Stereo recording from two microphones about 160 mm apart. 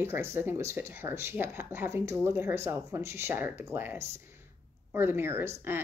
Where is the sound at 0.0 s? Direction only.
15° right (ahead or behind).